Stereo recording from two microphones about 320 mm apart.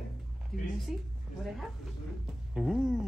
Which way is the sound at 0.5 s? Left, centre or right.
Centre.